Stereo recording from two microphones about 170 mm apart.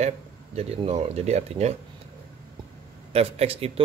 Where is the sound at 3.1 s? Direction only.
35° right (ahead or behind).